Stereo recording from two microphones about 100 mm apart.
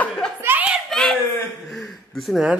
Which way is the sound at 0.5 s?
15° right (ahead or behind).